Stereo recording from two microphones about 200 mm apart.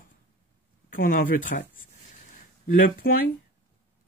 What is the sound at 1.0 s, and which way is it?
Speech, 45° left (ahead or behind).